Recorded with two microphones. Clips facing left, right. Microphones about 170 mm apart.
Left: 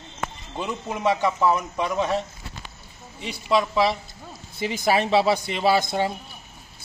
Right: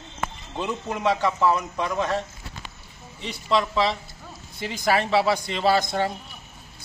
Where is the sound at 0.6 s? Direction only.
5° left (ahead or behind).